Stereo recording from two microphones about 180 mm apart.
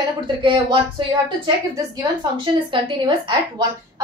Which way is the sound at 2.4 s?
30° right (ahead or behind).